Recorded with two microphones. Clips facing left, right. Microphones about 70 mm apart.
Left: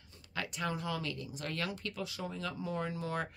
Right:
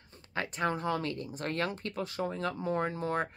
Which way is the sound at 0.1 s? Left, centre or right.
Right.